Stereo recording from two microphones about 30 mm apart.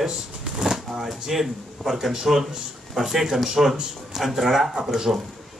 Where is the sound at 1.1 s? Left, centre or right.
Centre.